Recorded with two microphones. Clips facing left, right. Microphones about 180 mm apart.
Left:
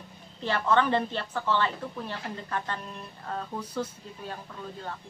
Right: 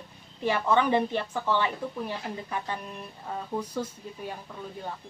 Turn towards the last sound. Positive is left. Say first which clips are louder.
# right 2 dB
turn(degrees=-10)  # may be behind; listen again after turning